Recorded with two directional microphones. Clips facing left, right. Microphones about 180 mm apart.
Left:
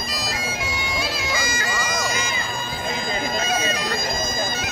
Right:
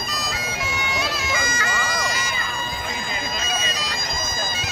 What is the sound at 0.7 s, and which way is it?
Bagpipes, 30° left (ahead or behind).